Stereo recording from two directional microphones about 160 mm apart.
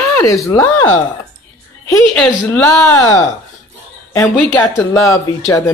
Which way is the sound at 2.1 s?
5° left (ahead or behind).